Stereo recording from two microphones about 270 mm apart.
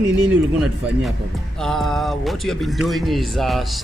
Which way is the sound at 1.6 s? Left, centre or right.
Centre.